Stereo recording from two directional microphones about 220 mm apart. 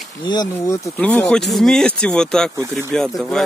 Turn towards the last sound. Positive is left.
turn(degrees=0)  # may be behind; listen again after turning